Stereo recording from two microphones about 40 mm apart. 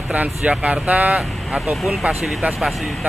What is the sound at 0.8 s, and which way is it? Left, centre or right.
Speech, right.